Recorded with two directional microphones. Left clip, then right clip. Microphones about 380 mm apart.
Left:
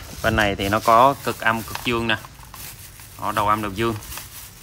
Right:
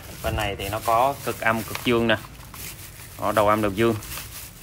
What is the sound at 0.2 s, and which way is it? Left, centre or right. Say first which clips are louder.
Speech: left 7 dB; centre.